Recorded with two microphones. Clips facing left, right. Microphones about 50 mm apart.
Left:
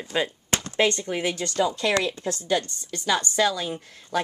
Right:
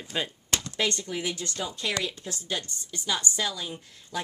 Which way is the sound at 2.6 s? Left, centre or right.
Left.